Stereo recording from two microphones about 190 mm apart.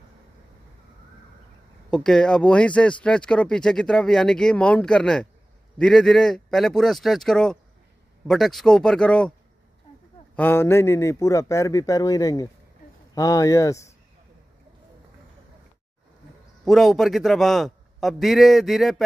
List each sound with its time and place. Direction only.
1.9 s speech: 5° left (ahead or behind)
10.3 s speech: 10° left (ahead or behind)
16.6 s speech: centre (ahead or behind)